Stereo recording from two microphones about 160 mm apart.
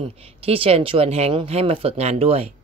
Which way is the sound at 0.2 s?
35° right (ahead or behind).